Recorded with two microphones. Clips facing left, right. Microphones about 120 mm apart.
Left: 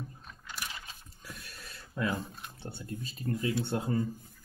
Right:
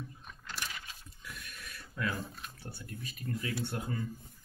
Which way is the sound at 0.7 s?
35° left (ahead or behind).